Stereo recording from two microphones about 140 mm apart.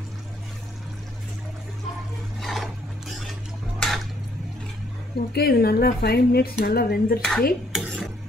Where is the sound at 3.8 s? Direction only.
Centre (ahead or behind).